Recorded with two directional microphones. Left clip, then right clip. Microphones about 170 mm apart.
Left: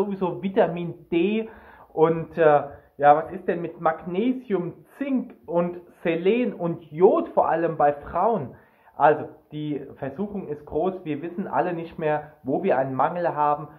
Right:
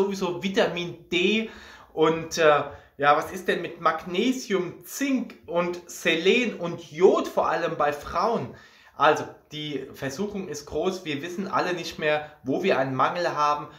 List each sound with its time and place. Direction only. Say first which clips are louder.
0.1 s speech: left 1 dB; 15° right (ahead or behind)